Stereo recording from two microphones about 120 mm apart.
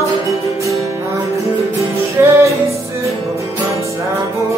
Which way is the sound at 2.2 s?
20° right (ahead or behind).